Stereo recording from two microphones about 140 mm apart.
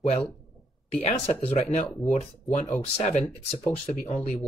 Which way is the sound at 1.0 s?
50° left (ahead or behind).